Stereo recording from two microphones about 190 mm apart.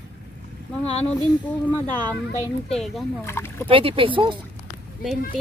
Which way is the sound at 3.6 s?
30° right (ahead or behind).